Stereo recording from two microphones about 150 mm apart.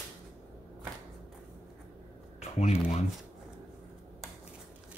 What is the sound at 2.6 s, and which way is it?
Shuffling cards, 50° left (ahead or behind).